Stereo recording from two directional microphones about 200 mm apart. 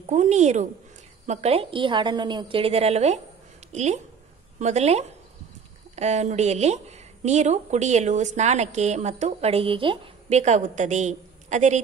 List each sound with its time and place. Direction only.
0.1 s a woman's voice: 35° right (ahead or behind)